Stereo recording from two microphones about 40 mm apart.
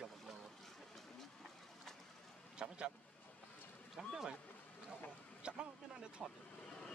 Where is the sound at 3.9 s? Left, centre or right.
Centre.